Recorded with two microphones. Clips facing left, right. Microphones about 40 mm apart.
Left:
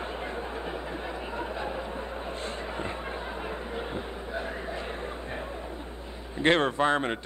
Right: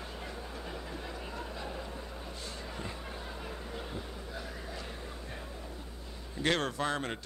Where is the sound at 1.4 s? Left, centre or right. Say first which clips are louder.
Left 9 dB; left.